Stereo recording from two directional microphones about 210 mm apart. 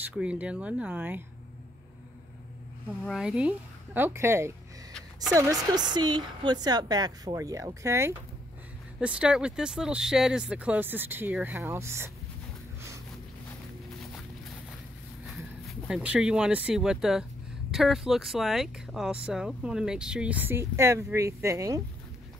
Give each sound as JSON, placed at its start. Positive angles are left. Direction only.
{"t": 0.2, "sound": "a woman's voice", "side_deg": -5}
{"t": 3.1, "sound": "a woman's voice", "side_deg": -5}
{"t": 15.6, "sound": "speech", "side_deg": -5}